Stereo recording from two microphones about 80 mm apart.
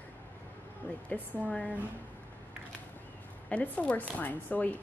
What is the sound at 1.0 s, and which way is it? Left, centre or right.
Speech, left.